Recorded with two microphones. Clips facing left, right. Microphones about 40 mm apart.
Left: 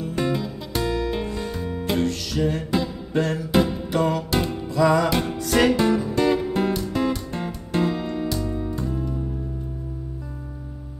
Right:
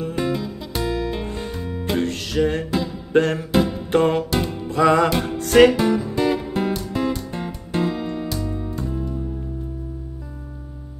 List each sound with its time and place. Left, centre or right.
0.1 s music: centre
2.0 s music: right
3.5 s music: centre
3.9 s music: right
4.3 s music: centre
4.6 s music: right
5.1 s music: centre